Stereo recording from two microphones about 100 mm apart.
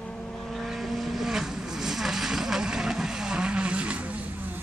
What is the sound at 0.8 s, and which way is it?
Vehicle, centre (ahead or behind).